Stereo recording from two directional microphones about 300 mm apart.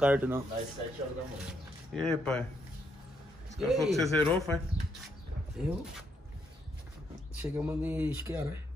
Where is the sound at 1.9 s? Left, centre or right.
Centre.